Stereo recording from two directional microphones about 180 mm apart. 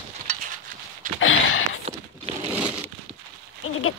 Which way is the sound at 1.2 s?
90° left.